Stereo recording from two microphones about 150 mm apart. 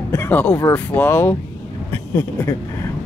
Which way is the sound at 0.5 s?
15° left (ahead or behind).